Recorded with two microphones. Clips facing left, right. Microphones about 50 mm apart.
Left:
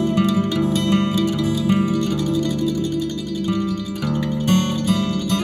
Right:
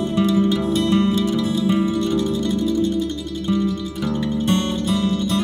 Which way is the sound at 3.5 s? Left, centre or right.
Left.